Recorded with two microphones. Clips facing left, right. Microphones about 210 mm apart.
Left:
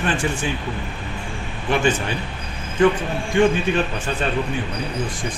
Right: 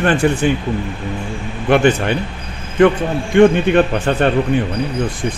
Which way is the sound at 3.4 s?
60° right (ahead or behind).